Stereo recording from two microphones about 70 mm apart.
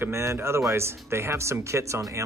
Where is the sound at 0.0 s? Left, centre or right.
Right.